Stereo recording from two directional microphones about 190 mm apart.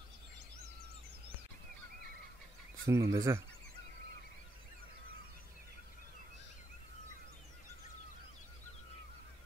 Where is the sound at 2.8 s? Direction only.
15° right (ahead or behind).